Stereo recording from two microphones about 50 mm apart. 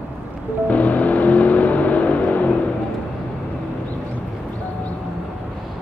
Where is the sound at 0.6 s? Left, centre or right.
Left.